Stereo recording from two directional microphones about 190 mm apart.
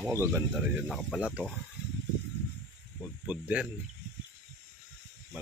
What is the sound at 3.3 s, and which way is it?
Speech, 5° right (ahead or behind).